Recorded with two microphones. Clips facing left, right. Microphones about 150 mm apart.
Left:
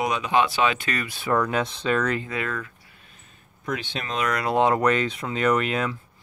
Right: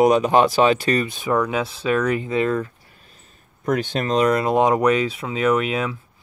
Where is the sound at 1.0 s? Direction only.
20° right (ahead or behind).